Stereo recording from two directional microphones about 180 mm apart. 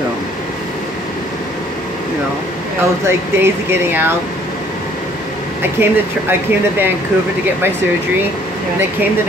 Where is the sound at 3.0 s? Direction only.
15° right (ahead or behind).